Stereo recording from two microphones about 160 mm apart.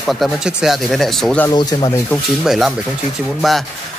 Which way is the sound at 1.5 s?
25° left (ahead or behind).